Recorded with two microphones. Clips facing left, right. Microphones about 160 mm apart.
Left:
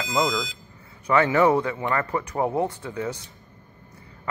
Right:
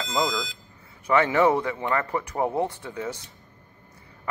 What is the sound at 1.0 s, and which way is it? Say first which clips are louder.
Speech: left 1 dB; 20° right (ahead or behind).